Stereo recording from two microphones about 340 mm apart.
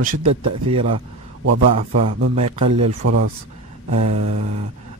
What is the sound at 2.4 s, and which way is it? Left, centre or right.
Speech, centre.